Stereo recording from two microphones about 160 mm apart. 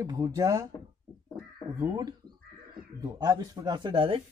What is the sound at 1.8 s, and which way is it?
Speech, 25° right (ahead or behind).